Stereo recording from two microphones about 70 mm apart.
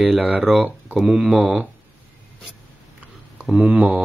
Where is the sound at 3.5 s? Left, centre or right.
Centre.